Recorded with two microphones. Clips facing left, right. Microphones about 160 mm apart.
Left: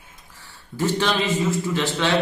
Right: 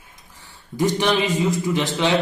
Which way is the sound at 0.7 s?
15° right (ahead or behind).